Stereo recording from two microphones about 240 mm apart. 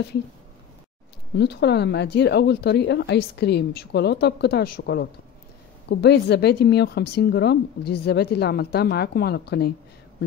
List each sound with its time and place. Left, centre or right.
1.3 s a woman's voice: left